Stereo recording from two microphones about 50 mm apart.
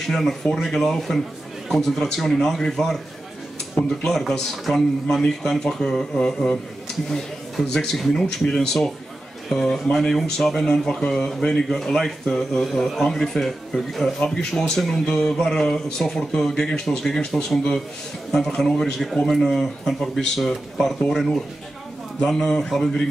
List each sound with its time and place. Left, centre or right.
0.0 s speech: centre
4.0 s speech: centre
9.9 s speech: centre
14.2 s speech: centre